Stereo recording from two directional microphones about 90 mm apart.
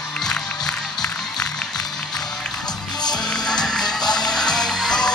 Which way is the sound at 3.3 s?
5° left (ahead or behind).